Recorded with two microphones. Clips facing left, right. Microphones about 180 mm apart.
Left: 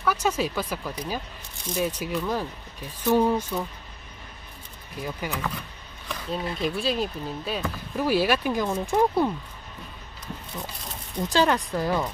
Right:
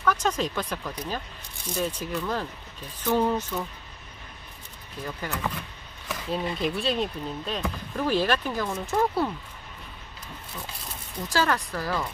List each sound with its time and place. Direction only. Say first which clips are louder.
0.0 s speech: left 1 dB; 10° left (ahead or behind)
5.0 s speech: left 2 dB; 10° left (ahead or behind)
6.0 s speech: right 1 dB; centre (ahead or behind); by 9.3 s 15° left (ahead or behind)
11.2 s speech: left 3 dB; 20° left (ahead or behind)